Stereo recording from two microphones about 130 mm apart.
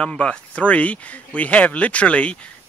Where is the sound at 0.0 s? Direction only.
10° left (ahead or behind).